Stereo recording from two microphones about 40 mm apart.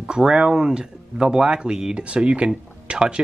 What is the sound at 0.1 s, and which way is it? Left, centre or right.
Speech, centre.